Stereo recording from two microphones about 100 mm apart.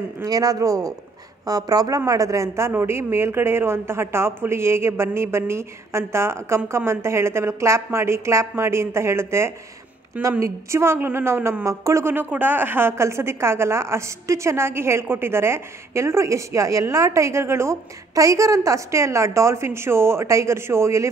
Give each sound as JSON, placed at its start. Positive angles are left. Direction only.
{"t": 0.2, "sound": "a woman's voice", "side_deg": -35}